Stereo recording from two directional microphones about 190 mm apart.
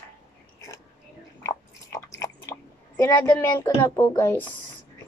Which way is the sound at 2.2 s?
15° left (ahead or behind).